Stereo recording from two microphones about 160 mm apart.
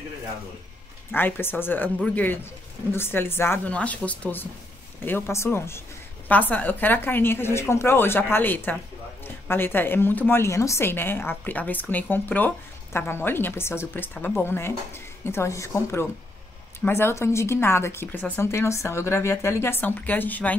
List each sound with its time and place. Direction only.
1.1 s a woman's voice: 10° left (ahead or behind)